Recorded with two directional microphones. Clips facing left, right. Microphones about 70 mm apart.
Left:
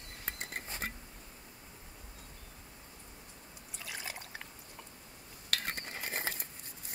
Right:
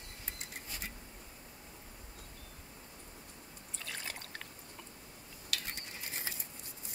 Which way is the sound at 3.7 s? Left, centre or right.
Centre.